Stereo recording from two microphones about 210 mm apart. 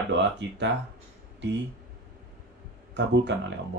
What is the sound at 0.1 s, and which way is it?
Speech, 55° right (ahead or behind).